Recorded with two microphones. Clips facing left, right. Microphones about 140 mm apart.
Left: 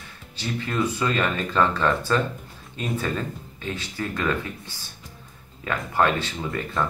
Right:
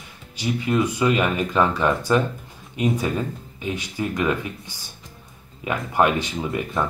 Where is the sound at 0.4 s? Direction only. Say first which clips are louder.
Right 4 dB; 10° right (ahead or behind).